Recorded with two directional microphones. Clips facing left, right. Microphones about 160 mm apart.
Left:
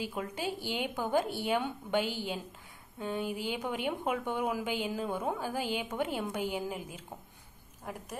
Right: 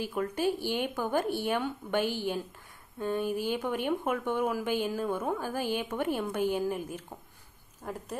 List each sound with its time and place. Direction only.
0.0 s speech: 15° left (ahead or behind)